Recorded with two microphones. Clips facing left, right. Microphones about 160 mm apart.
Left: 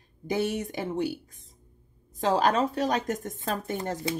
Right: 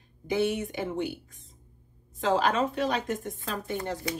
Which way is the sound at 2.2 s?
40° left (ahead or behind).